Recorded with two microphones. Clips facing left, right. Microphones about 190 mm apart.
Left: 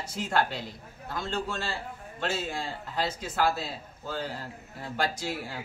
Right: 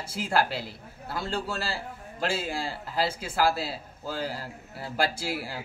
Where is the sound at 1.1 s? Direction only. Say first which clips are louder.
Right 1 dB; 35° right (ahead or behind).